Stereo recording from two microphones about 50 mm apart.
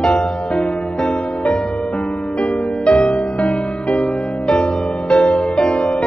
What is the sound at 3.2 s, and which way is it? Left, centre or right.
Music, centre.